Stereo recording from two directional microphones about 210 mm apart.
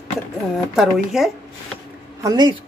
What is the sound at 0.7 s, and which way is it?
Speech, centre (ahead or behind).